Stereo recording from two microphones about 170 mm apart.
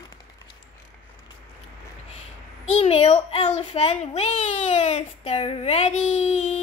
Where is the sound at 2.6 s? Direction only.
40° left (ahead or behind).